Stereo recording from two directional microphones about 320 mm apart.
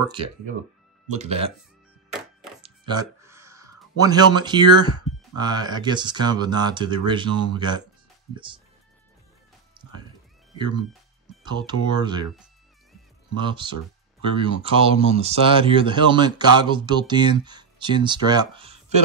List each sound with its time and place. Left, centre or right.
1.1 s speech: centre
2.6 s speech: centre
9.8 s music: centre
11.4 s speech: centre
13.4 s speech: centre